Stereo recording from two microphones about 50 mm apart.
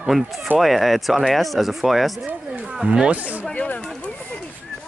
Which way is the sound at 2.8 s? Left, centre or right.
Right.